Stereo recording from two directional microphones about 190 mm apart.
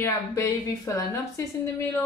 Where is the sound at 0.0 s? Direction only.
15° left (ahead or behind).